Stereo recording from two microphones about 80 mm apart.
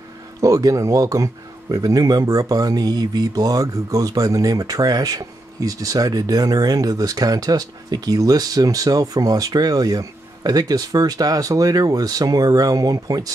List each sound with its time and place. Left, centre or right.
0.4 s speech: right